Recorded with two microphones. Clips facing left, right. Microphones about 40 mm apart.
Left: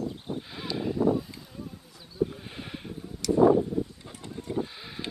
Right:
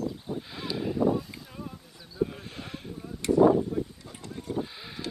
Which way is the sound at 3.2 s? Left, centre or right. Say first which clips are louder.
Even; right.